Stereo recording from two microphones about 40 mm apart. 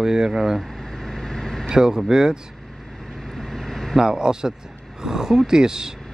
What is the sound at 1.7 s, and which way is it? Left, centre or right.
Speech, centre.